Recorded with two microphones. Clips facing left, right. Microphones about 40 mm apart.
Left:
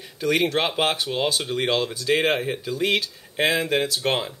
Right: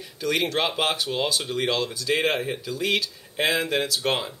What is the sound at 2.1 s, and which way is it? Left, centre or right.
Speech, centre.